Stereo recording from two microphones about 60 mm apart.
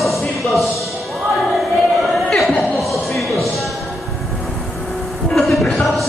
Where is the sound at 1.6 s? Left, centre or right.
Centre.